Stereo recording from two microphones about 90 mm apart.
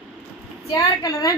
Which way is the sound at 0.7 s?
45° left (ahead or behind).